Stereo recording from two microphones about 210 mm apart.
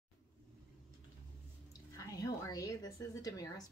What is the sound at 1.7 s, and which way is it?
Speech, 15° left (ahead or behind).